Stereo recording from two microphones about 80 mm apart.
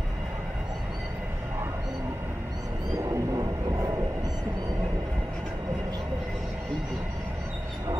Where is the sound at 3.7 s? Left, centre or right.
Right.